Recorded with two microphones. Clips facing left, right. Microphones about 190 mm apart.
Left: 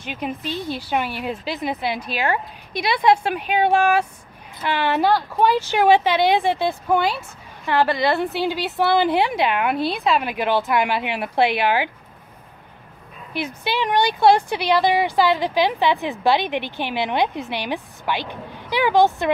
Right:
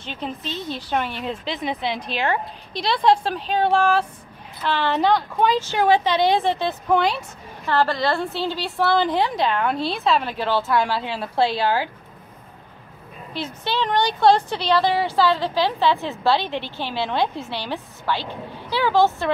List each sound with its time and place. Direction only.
0.0 s speech: 10° left (ahead or behind)
13.3 s speech: 15° left (ahead or behind)